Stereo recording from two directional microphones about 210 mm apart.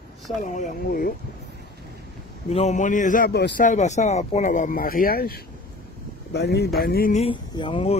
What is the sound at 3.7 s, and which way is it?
Speech, 35° left (ahead or behind).